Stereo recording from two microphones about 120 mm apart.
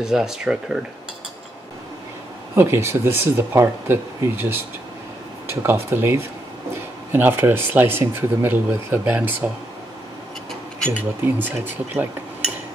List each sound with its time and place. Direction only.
0.0 s speech: 5° right (ahead or behind)
2.5 s speech: 20° right (ahead or behind)
5.6 s speech: 20° right (ahead or behind)
11.0 s speech: 15° right (ahead or behind)